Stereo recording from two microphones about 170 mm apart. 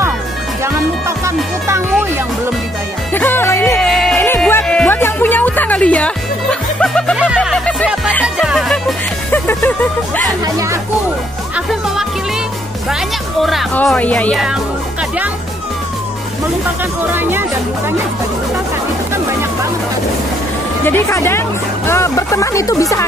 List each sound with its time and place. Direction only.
0.7 s music: 15° right (ahead or behind)
3.1 s music: 10° left (ahead or behind)
3.9 s music: centre (ahead or behind)
4.2 s music: 10° left (ahead or behind); by 7.6 s 5° right (ahead or behind)
7.6 s music: 5° left (ahead or behind)
8.4 s music: centre (ahead or behind)
9.3 s music: 10° left (ahead or behind)
10.4 s speech: 20° right (ahead or behind)
13.4 s speech: centre (ahead or behind)
17.0 s speech: 10° right (ahead or behind)
20.8 s speech: 15° left (ahead or behind)